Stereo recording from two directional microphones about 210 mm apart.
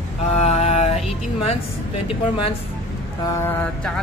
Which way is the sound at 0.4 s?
30° left (ahead or behind).